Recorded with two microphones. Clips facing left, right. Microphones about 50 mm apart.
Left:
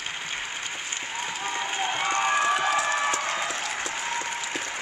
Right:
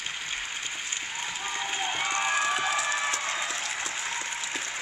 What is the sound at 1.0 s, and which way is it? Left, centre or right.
Applause, left.